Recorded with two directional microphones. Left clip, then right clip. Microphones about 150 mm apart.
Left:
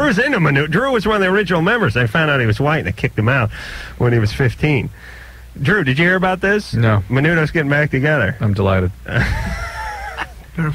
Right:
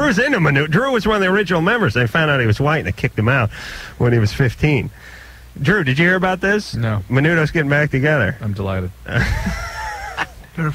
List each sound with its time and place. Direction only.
0.0 s speech: 25° left (ahead or behind)